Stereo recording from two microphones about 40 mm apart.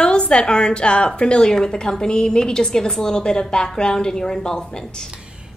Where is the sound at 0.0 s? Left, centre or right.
Left.